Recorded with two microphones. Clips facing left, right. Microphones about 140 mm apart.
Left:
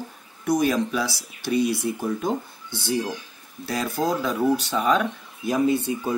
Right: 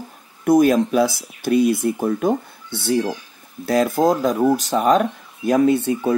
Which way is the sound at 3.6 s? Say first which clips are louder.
Right 8 dB; 50° right (ahead or behind).